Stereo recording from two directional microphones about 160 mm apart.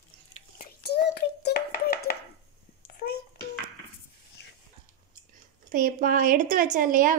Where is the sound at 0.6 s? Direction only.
90° left.